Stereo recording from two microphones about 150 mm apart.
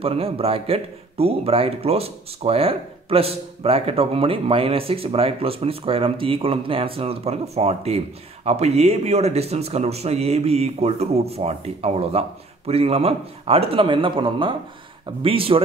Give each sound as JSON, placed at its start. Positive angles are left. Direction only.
{"t": 0.0, "sound": "speech", "side_deg": -40}